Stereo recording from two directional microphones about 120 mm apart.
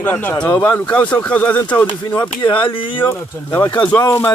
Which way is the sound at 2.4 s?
45° left (ahead or behind).